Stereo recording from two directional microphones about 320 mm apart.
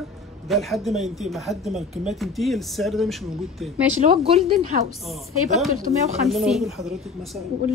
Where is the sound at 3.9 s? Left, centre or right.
Centre.